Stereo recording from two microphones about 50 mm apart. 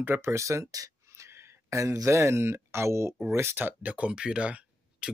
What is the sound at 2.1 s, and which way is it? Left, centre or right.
Speech, right.